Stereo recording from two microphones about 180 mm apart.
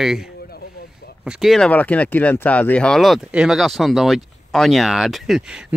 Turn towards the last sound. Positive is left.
turn(degrees=-5)  # may be behind; listen again after turning